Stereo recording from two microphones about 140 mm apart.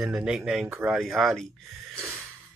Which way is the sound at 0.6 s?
15° right (ahead or behind).